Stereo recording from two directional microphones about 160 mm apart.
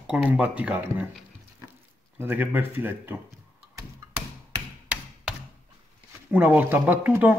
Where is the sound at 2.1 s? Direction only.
10° right (ahead or behind).